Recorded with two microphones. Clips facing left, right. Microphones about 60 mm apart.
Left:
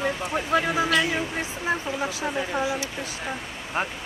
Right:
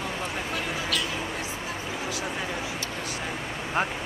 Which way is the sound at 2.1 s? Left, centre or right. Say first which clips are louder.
Left 3 dB; left.